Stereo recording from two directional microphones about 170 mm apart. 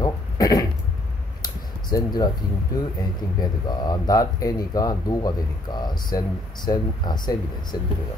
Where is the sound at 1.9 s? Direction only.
25° left (ahead or behind).